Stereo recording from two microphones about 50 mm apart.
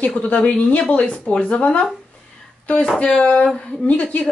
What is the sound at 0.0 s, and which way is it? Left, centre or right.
A woman's voice, left.